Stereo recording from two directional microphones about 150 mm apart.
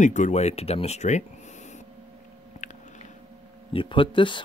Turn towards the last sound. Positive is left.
turn(degrees=35)  # may be behind; listen again after turning